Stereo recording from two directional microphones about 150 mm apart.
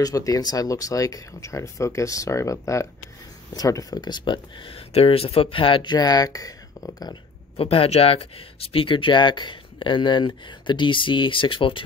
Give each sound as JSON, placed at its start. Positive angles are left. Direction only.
{"t": 0.0, "sound": "speech", "side_deg": 25}
{"t": 7.5, "sound": "speech", "side_deg": 40}